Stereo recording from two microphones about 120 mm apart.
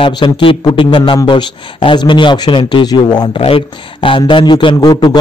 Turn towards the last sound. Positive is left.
turn(degrees=35)  # may be behind; listen again after turning